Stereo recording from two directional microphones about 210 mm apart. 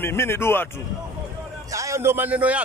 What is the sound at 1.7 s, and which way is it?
Speech, 15° right (ahead or behind).